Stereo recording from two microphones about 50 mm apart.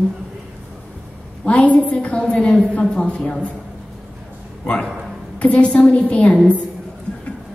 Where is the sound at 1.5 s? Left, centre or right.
Left.